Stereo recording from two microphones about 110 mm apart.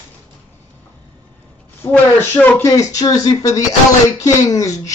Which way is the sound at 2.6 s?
30° left (ahead or behind).